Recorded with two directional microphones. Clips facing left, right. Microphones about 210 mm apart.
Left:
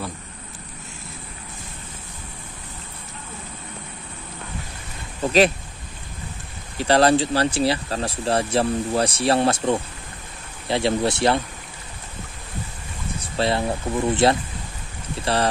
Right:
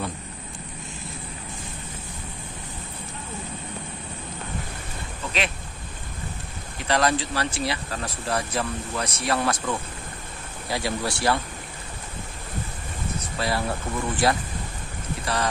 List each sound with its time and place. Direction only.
5.2 s speech: 40° left (ahead or behind)
6.8 s speech: 30° left (ahead or behind)
13.4 s speech: 25° left (ahead or behind)